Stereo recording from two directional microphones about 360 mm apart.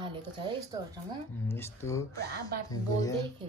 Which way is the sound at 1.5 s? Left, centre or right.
Centre.